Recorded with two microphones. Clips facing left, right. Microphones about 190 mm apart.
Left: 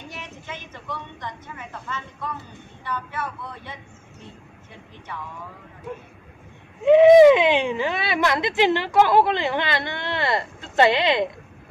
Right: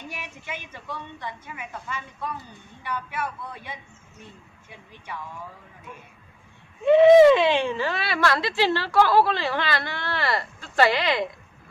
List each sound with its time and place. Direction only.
0.1 s a woman's voice: 10° right (ahead or behind)
6.8 s speech: 15° left (ahead or behind)